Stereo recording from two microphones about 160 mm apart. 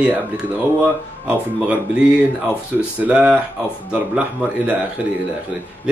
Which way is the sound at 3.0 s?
5° right (ahead or behind).